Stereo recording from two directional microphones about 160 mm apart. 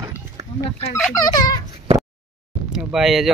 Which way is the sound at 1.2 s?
25° left (ahead or behind).